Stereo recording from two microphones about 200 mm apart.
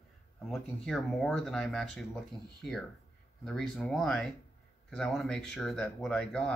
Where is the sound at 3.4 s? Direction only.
Centre (ahead or behind).